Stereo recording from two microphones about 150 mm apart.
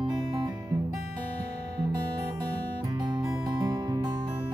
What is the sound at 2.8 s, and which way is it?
Music, 30° right (ahead or behind).